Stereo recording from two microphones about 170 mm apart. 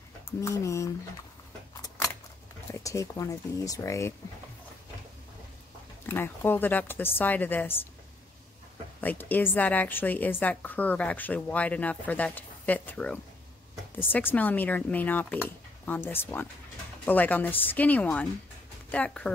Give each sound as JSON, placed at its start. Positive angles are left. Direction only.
{"t": 0.4, "sound": "a woman's voice", "side_deg": 20}
{"t": 2.7, "sound": "speech", "side_deg": 20}
{"t": 6.0, "sound": "a woman's voice", "side_deg": 10}
{"t": 9.0, "sound": "a woman's voice", "side_deg": 10}